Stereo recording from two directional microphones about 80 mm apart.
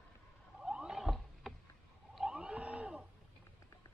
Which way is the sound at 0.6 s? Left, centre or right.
Centre.